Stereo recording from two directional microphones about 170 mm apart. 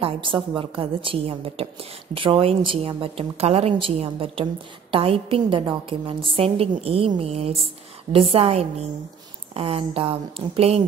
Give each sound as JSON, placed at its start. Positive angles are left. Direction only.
{"t": 0.0, "sound": "a woman's voice", "side_deg": -30}